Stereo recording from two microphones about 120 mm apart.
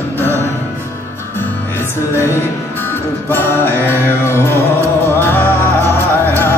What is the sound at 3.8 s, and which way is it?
Mantra, 20° left (ahead or behind).